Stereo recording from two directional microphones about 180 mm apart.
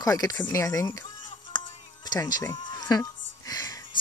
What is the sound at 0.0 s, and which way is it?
Speech, 20° left (ahead or behind).